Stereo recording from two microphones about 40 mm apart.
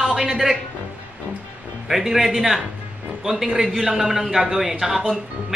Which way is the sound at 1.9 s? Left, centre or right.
Centre.